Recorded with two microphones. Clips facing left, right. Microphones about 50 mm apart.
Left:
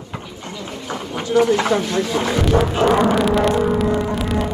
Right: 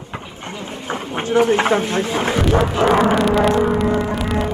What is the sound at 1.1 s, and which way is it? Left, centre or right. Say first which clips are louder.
Speech: even; right.